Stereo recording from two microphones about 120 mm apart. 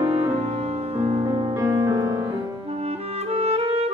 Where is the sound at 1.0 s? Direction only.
55° right (ahead or behind).